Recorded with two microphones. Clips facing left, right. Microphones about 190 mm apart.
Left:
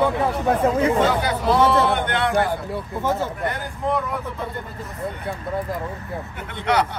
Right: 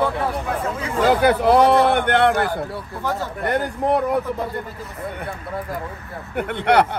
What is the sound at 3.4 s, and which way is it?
Speech, 60° right (ahead or behind).